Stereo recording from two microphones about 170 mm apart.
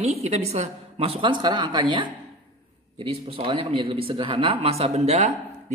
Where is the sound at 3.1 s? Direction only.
35° right (ahead or behind).